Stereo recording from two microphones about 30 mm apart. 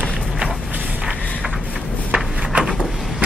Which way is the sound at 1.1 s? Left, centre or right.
Left.